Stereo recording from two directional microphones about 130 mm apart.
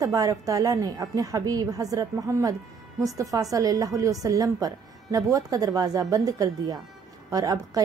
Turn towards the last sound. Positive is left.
turn(degrees=-30)  # may be behind; listen again after turning